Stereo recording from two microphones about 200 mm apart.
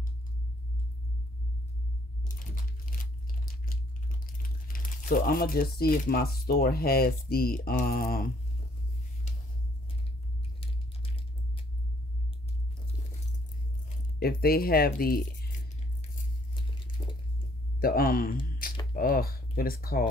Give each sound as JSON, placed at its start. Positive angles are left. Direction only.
{"t": 2.3, "sound": "tearing", "side_deg": 45}
{"t": 4.6, "sound": "speech", "side_deg": 45}
{"t": 14.2, "sound": "speech", "side_deg": 50}
{"t": 17.0, "sound": "squish", "side_deg": 20}
{"t": 17.7, "sound": "speech", "side_deg": 45}